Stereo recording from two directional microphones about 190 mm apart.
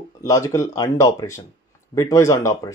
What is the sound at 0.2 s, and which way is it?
Speech, 15° left (ahead or behind).